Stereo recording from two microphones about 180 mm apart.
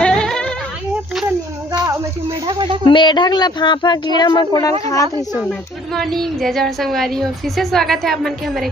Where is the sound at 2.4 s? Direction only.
25° right (ahead or behind).